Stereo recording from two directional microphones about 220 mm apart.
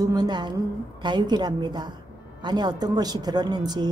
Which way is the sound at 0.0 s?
20° right (ahead or behind).